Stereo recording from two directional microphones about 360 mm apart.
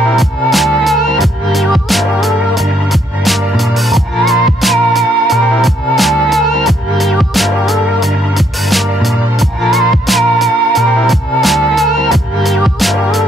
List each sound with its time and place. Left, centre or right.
0.1 s music: centre
9.7 s music: centre